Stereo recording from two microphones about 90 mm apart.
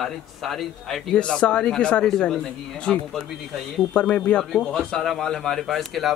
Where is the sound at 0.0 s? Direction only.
Centre (ahead or behind).